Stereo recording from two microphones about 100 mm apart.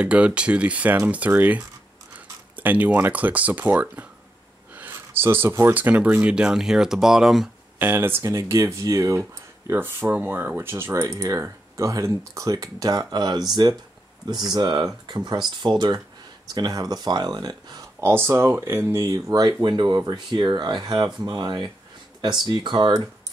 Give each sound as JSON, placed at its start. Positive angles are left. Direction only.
{"t": 0.0, "sound": "speech", "side_deg": -10}
{"t": 7.8, "sound": "speech", "side_deg": -20}
{"t": 18.0, "sound": "speech", "side_deg": -25}